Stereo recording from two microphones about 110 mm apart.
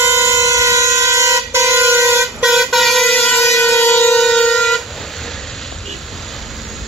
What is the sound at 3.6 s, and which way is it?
Train, 25° left (ahead or behind).